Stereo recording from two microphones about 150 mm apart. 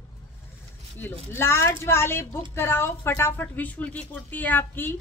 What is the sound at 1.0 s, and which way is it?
Speech, 15° left (ahead or behind).